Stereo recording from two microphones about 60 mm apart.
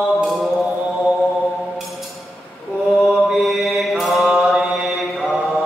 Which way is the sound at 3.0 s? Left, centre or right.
Centre.